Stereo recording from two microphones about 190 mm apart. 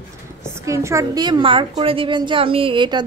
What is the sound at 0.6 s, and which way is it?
A woman's voice, 15° right (ahead or behind).